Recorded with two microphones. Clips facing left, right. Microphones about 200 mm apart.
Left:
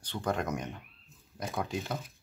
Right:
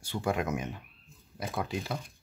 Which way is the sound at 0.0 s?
10° right (ahead or behind).